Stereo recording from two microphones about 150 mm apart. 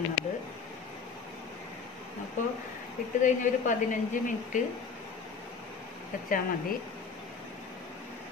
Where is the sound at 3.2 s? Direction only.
55° left (ahead or behind).